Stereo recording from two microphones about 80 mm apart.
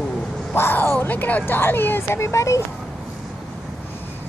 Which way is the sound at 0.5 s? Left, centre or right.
Left.